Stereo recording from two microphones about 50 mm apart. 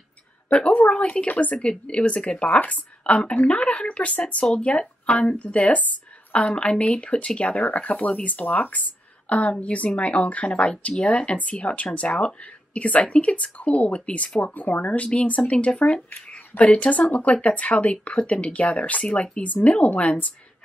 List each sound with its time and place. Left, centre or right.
0.7 s a woman's voice: left